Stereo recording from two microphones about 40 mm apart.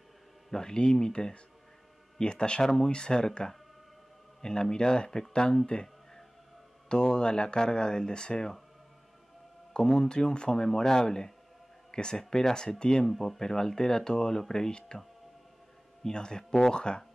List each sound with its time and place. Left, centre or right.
0.5 s speech: centre
6.9 s speech: left
9.8 s speech: centre
13.0 s speech: centre
16.0 s speech: centre